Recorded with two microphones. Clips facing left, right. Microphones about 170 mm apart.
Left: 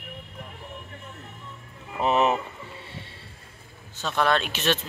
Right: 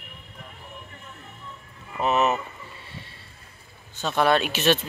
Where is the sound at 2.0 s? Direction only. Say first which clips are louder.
Even; 30° left (ahead or behind).